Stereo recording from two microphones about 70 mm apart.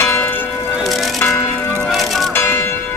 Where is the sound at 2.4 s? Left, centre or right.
Left.